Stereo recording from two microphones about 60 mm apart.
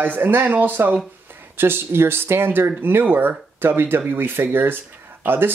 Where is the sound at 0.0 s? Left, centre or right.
Right.